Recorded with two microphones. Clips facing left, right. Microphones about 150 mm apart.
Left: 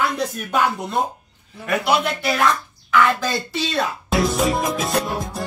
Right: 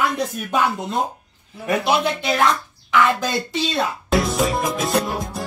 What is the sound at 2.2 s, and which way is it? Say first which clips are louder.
Speech: right 1 dB; 20° right (ahead or behind).